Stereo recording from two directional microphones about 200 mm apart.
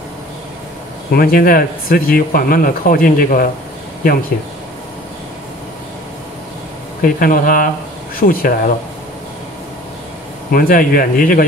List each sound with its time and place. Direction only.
1.1 s speech: 50° left (ahead or behind)
7.0 s speech: 45° left (ahead or behind)
10.5 s speech: 45° left (ahead or behind)